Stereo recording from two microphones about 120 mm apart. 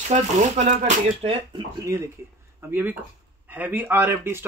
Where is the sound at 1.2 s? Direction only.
50° right (ahead or behind).